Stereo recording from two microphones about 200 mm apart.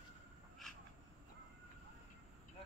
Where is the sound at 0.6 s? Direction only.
Centre (ahead or behind).